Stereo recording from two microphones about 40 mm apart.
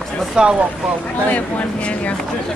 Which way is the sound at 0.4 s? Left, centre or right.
Right.